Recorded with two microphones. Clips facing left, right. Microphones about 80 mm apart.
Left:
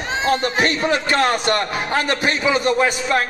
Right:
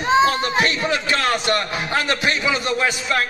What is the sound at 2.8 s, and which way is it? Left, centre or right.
Speech, left.